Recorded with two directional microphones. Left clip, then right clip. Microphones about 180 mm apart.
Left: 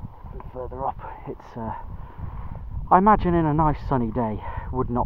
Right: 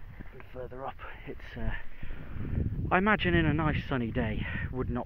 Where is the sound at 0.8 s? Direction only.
10° right (ahead or behind).